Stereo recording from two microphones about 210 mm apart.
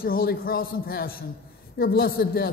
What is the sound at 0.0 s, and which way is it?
A man's voice, 45° left (ahead or behind).